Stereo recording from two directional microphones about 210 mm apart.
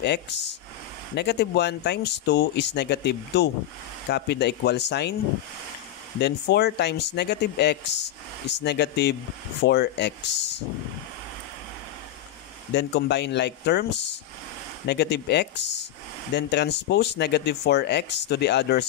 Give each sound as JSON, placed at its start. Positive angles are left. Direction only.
{"t": 0.0, "sound": "speech", "side_deg": 55}
{"t": 6.1, "sound": "speech", "side_deg": 50}
{"t": 12.7, "sound": "speech", "side_deg": 55}